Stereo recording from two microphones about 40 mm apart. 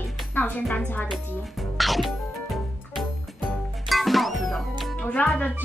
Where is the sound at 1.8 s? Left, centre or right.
Centre.